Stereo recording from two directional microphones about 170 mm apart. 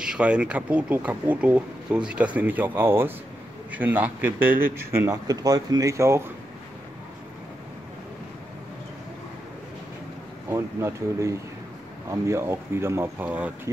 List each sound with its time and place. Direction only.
0.0 s speech: 5° right (ahead or behind)
10.5 s speech: 15° right (ahead or behind)